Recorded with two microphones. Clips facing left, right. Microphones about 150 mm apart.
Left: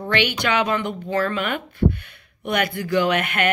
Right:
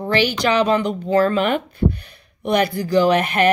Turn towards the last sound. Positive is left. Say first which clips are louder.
# right 4 dB
turn(degrees=-30)  # may be behind; listen again after turning